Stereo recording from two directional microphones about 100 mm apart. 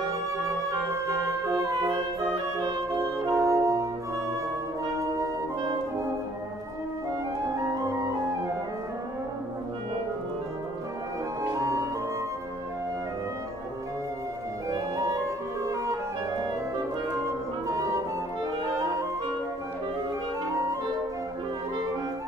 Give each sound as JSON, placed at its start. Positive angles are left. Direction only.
{"t": 0.7, "sound": "music", "side_deg": -30}
{"t": 3.3, "sound": "music", "side_deg": -30}
{"t": 7.6, "sound": "music", "side_deg": -35}
{"t": 11.5, "sound": "music", "side_deg": -30}
{"t": 14.7, "sound": "clarinet", "side_deg": -30}